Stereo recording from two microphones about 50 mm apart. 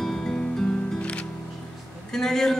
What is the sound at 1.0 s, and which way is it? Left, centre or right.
Music, left.